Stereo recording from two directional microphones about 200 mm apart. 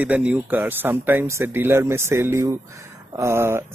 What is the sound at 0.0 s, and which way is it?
Speech, 5° right (ahead or behind).